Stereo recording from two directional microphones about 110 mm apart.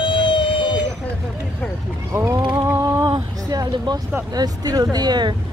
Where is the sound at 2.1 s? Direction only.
25° right (ahead or behind).